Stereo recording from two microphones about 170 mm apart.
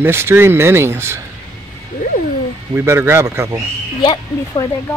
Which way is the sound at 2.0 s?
50° left (ahead or behind).